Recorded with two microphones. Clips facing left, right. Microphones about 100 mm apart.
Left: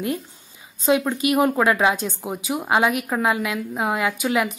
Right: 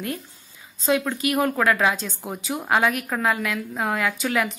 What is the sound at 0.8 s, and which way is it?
A woman's voice, 20° left (ahead or behind).